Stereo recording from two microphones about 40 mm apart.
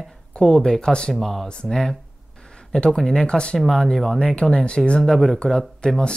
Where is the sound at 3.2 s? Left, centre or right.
Left.